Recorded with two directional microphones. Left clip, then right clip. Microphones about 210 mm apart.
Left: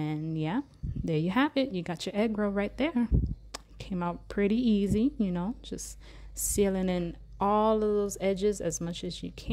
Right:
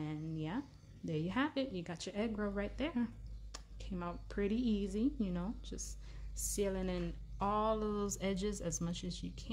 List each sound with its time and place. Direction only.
0.0 s speech: 40° left (ahead or behind)